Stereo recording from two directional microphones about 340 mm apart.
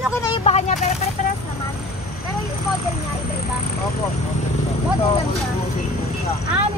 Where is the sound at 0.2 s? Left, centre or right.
Centre.